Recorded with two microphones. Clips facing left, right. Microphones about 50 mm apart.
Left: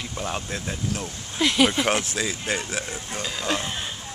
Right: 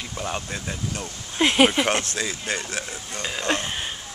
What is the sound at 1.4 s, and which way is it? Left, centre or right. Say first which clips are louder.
Speech: right 2 dB; right.